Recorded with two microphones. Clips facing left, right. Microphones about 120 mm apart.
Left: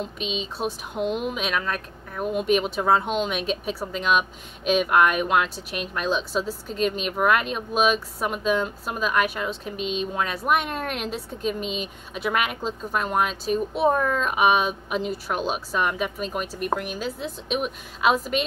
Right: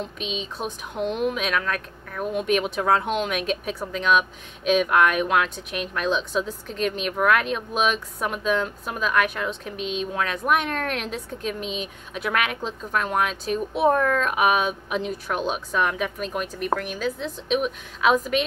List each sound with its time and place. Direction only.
0.0 s a woman's voice: centre (ahead or behind)